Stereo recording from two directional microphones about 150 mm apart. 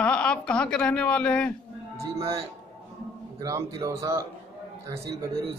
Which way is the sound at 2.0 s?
20° right (ahead or behind).